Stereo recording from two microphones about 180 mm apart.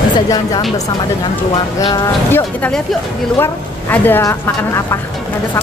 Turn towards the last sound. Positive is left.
turn(degrees=15)  # may be behind; listen again after turning